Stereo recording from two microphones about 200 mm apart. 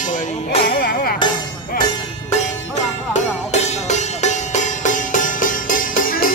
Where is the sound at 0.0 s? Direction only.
40° left (ahead or behind).